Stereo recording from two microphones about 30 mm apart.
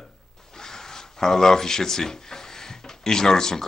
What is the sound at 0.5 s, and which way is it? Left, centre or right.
A man's voice, centre.